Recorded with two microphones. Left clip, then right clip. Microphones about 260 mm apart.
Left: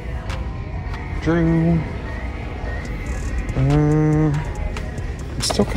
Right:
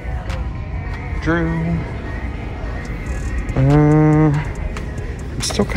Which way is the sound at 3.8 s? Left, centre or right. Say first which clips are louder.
Right 5 dB; centre.